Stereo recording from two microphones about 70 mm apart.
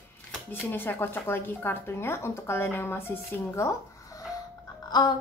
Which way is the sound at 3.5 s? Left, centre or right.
Left.